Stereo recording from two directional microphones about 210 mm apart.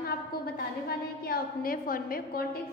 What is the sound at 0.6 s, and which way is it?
A woman's voice, 45° left (ahead or behind).